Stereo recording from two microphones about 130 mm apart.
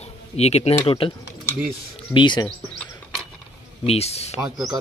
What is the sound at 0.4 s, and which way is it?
Speech, 55° left (ahead or behind).